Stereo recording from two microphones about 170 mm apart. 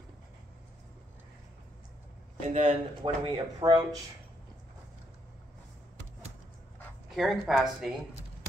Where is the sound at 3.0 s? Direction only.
30° right (ahead or behind).